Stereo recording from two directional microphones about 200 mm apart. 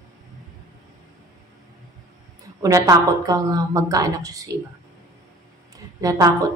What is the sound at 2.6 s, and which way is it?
A woman's voice, 15° right (ahead or behind).